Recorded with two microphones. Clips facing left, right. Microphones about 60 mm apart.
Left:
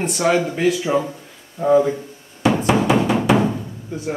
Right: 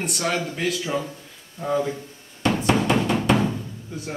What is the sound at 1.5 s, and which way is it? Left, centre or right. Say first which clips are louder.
Music: left 9 dB; centre.